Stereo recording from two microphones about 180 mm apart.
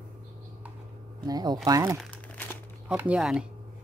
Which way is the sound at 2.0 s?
5° left (ahead or behind).